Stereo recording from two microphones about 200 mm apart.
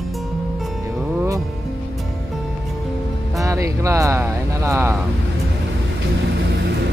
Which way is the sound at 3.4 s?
15° right (ahead or behind).